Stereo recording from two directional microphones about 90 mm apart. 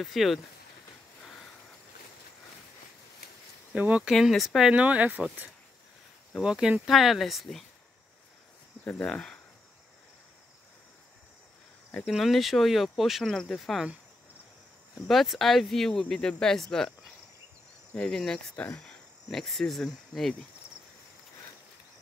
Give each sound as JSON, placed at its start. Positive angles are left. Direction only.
{"t": 0.0, "sound": "speech", "side_deg": 0}
{"t": 3.7, "sound": "speech", "side_deg": -15}
{"t": 4.1, "sound": "speech", "side_deg": 0}
{"t": 6.4, "sound": "speech", "side_deg": -5}
{"t": 8.8, "sound": "speech", "side_deg": 10}
{"t": 12.0, "sound": "speech", "side_deg": 0}
{"t": 15.0, "sound": "speech", "side_deg": 0}
{"t": 17.9, "sound": "cricket", "side_deg": 10}